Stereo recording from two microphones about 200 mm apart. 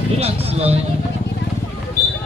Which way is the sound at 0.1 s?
30° right (ahead or behind).